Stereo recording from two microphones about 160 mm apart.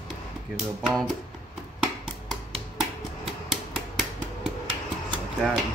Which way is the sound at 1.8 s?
5° right (ahead or behind).